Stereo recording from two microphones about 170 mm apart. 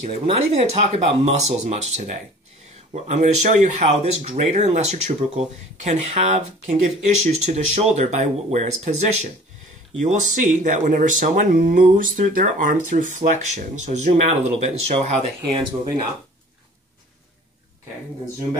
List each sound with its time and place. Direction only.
0.0 s speech: 40° right (ahead or behind)